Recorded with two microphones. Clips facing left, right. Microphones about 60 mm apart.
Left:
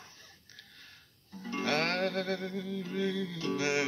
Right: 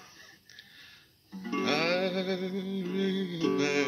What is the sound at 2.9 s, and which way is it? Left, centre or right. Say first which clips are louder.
Speech: right 2 dB; left.